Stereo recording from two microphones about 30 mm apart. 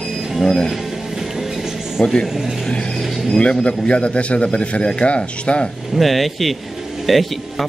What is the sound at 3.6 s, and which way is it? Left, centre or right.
A man's voice, left.